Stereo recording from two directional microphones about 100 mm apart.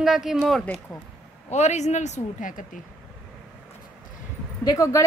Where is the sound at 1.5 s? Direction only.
90° left.